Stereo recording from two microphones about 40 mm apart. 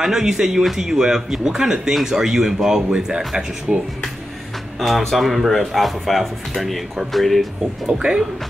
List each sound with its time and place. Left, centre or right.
0.0 s a man's voice: centre
4.7 s speech: centre